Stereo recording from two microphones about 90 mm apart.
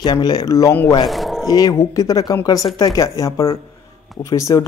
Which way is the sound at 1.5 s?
40° left (ahead or behind).